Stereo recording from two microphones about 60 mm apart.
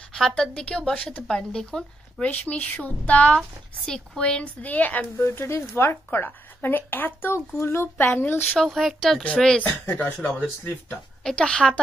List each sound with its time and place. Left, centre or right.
0.1 s speech: centre
2.3 s speech: left
3.3 s speech: centre; by 5.9 s left
6.1 s speech: left
8.6 s speech: centre
9.6 s speech: left
11.2 s speech: centre